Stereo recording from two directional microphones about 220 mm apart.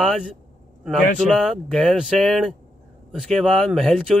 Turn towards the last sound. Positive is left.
turn(degrees=5)  # may be behind; listen again after turning